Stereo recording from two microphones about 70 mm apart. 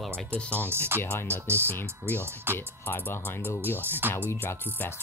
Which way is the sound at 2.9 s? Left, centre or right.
Left.